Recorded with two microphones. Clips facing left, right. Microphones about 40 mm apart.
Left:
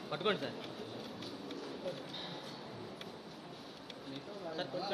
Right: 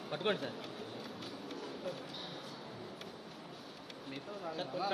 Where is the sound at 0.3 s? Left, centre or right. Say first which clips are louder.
Even; left.